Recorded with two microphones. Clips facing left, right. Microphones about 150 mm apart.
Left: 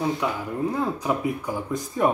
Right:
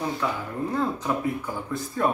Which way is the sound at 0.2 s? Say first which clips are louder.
Left 2 dB; 15° left (ahead or behind).